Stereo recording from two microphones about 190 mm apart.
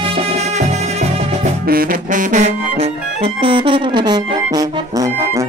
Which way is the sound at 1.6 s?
50° right (ahead or behind).